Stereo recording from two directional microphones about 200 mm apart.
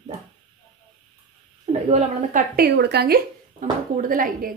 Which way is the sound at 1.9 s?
40° right (ahead or behind).